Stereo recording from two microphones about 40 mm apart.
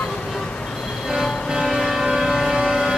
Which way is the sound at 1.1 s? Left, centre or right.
Centre.